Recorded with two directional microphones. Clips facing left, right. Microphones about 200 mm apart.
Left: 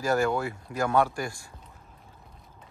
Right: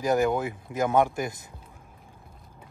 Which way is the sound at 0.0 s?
20° right (ahead or behind).